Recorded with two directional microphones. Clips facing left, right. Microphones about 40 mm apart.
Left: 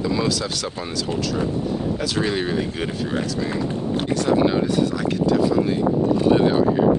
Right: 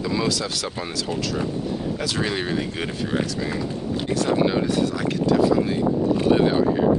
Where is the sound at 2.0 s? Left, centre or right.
Centre.